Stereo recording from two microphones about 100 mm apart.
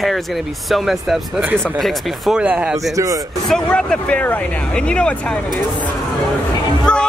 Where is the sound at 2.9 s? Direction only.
35° right (ahead or behind).